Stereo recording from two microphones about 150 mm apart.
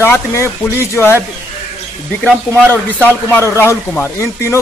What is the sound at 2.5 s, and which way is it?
Speech, 15° left (ahead or behind).